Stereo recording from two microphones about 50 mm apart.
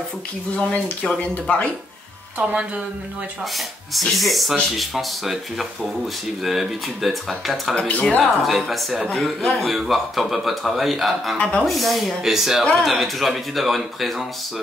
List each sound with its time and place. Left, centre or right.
0.6 s speech: centre
2.4 s speech: right
3.5 s a man's voice: centre
7.9 s speech: left
8.2 s a man's voice: centre
11.3 s speech: left
11.6 s a man's voice: centre